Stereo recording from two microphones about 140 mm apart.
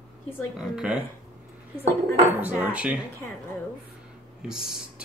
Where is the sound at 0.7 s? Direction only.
5° right (ahead or behind).